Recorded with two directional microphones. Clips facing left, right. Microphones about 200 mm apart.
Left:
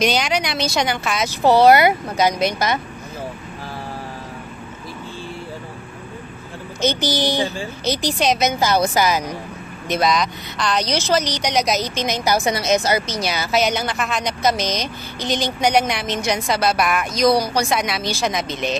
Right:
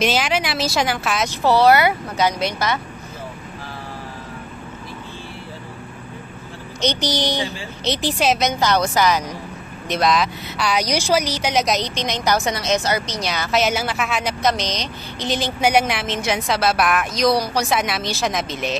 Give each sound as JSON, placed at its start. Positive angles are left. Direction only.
{"t": 0.0, "sound": "speech", "side_deg": -5}
{"t": 1.4, "sound": "a woman's voice", "side_deg": 15}
{"t": 7.0, "sound": "a woman's voice", "side_deg": 5}
{"t": 15.2, "sound": "speech", "side_deg": -5}